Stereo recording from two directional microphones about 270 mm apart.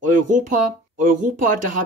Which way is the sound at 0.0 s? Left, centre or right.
Right.